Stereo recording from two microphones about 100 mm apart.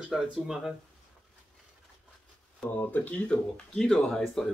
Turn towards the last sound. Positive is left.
turn(degrees=5)  # may be behind; listen again after turning